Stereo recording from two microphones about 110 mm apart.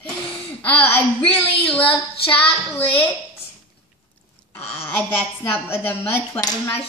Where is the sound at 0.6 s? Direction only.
15° left (ahead or behind).